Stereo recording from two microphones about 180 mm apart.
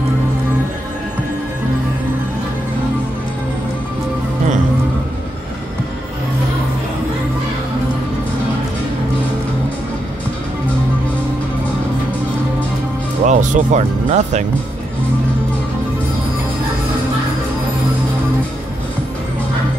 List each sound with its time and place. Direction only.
13.2 s music: 45° right (ahead or behind)